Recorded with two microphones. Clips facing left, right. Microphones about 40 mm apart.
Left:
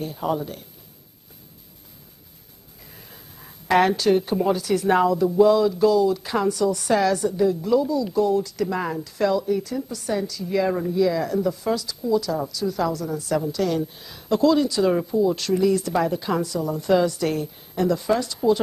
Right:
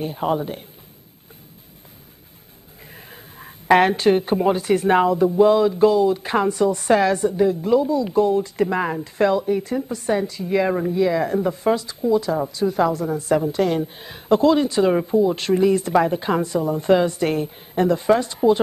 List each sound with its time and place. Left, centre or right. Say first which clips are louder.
0.0 s speech: right 3 dB; right
2.9 s speech: right 5 dB; right